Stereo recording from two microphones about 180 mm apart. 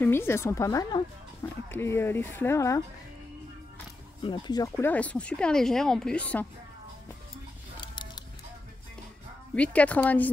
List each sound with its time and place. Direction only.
0.0 s speech: 15° left (ahead or behind)
4.2 s speech: 25° left (ahead or behind); by 6.4 s 5° left (ahead or behind)
7.8 s a sound: 25° left (ahead or behind)
9.6 s speech: 5° left (ahead or behind)